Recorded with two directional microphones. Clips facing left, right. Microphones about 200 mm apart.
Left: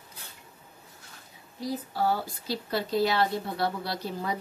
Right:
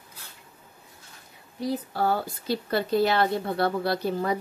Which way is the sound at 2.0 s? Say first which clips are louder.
Even; 55° right (ahead or behind).